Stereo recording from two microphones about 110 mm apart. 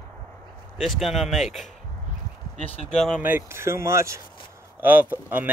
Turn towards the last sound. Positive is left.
turn(degrees=-15)  # may be behind; listen again after turning